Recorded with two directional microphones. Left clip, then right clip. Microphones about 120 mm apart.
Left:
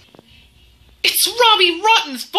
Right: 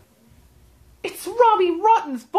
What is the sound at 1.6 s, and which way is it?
Speech, centre (ahead or behind).